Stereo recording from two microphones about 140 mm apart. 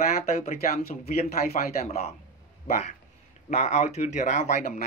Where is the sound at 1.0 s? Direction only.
50° left (ahead or behind).